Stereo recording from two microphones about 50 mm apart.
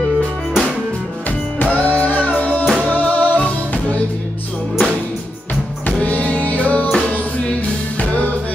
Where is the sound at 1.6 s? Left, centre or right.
Left.